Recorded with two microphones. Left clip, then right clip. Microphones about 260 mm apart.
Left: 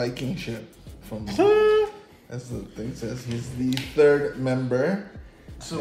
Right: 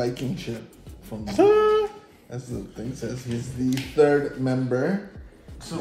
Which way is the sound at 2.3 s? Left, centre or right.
Left.